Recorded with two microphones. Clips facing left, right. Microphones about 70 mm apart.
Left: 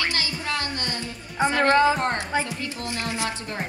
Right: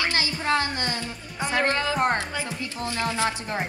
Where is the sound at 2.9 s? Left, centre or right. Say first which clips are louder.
Right 4 dB; right.